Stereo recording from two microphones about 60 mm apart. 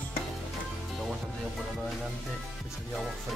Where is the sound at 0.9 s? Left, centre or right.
Centre.